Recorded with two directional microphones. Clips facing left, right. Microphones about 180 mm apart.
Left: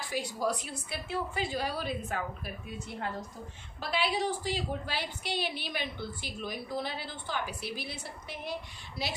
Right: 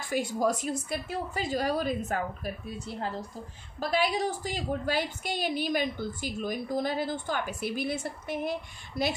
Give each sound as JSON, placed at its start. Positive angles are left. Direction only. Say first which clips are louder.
{"t": 0.1, "sound": "a woman's voice", "louder": "right 5 dB", "side_deg": -50}